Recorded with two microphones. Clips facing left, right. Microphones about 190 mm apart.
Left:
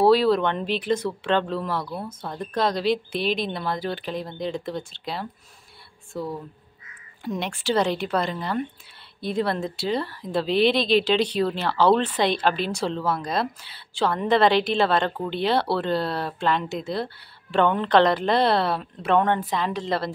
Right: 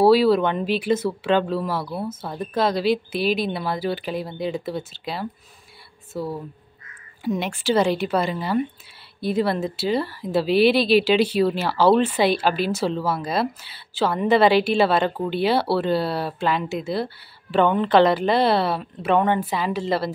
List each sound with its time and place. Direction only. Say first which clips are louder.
0.0 s speech: right 2 dB; 5° right (ahead or behind)